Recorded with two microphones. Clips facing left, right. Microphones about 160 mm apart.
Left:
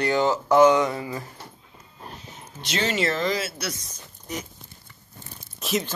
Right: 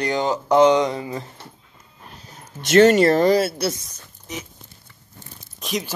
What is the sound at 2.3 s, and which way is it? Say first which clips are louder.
Speech: right 11 dB; 50° right (ahead or behind).